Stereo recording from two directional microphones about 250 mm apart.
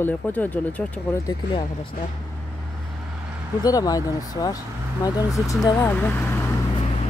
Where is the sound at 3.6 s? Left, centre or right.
Centre.